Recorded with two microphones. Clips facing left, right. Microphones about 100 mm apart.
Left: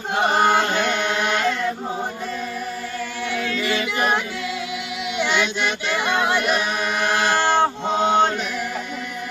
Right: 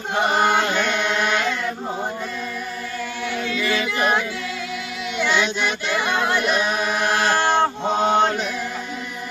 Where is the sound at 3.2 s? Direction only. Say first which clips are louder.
Even; 5° right (ahead or behind).